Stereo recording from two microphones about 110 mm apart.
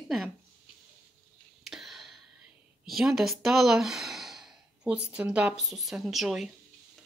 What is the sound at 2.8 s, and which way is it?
Speech, centre (ahead or behind).